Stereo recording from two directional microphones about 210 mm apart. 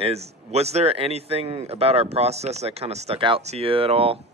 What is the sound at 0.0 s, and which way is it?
Speech, 30° right (ahead or behind).